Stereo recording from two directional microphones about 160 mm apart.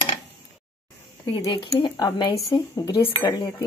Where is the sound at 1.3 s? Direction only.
25° left (ahead or behind).